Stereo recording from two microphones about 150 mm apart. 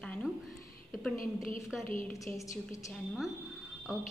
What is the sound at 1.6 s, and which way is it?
Speech, centre (ahead or behind).